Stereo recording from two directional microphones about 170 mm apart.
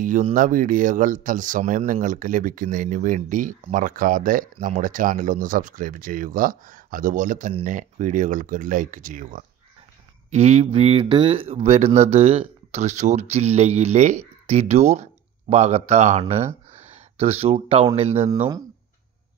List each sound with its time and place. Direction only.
0.3 s speech: 50° right (ahead or behind)
10.3 s speech: 40° right (ahead or behind)